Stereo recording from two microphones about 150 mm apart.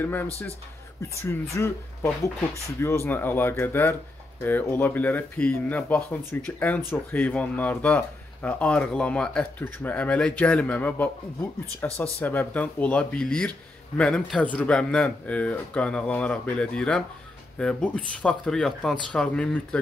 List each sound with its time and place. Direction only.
0.0 s speech: 15° left (ahead or behind)